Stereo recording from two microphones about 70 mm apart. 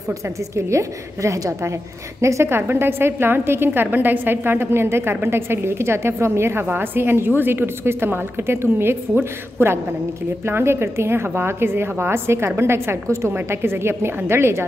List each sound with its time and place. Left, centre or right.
0.6 s a woman's voice: right